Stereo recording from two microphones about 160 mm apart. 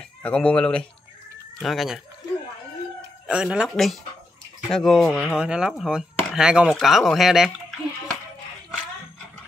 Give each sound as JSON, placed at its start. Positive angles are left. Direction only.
{"t": 0.2, "sound": "speech", "side_deg": 5}
{"t": 3.3, "sound": "speech", "side_deg": -5}